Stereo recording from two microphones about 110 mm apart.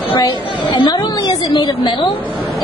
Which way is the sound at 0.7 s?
45° left (ahead or behind).